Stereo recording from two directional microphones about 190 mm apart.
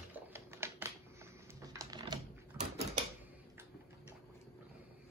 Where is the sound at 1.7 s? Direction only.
20° right (ahead or behind).